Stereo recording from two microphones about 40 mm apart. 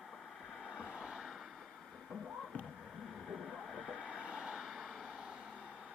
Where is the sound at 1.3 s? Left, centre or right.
Centre.